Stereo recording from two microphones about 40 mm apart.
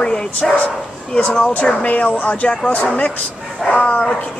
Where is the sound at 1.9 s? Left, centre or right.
Left.